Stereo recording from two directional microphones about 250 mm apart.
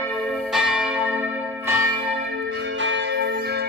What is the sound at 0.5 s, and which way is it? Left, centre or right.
Church bell, centre.